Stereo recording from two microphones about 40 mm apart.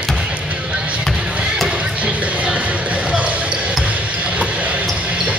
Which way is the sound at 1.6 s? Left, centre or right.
Right.